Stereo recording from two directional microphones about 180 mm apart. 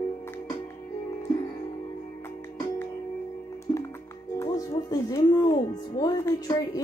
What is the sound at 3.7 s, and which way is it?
Music, 15° left (ahead or behind).